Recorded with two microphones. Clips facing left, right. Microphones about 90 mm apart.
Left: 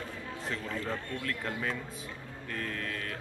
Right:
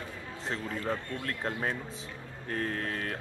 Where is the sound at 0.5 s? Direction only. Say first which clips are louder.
Right 3 dB; 30° right (ahead or behind).